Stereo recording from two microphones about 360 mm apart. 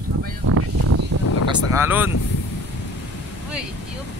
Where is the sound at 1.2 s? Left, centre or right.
Left.